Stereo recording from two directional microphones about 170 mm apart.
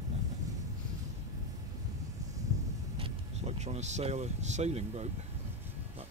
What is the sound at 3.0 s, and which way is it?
Speech, 40° right (ahead or behind).